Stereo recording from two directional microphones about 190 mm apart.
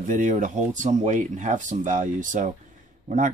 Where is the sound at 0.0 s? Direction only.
40° right (ahead or behind).